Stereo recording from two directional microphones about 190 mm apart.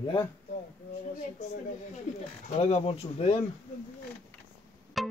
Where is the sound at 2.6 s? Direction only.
35° left (ahead or behind).